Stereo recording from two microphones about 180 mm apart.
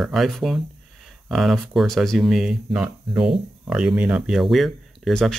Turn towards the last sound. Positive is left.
turn(degrees=0)  # may be behind; listen again after turning